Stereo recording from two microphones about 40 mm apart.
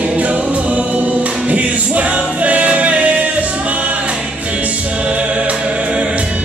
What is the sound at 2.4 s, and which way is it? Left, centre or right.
Music, right.